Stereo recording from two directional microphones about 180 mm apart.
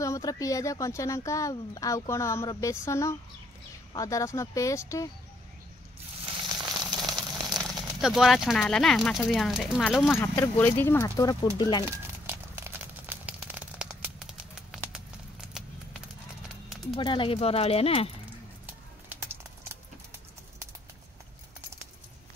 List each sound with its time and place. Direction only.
0.0 s speech: 20° left (ahead or behind)
6.6 s a sound: 20° right (ahead or behind)
7.5 s speech: centre (ahead or behind)
10.2 s speech: 20° left (ahead or behind)
11.8 s crumpling: 15° right (ahead or behind)
15.6 s horse: 5° right (ahead or behind)
16.9 s speech: 25° left (ahead or behind)